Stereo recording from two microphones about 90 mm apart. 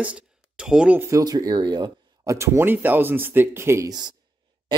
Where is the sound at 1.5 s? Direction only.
55° right (ahead or behind).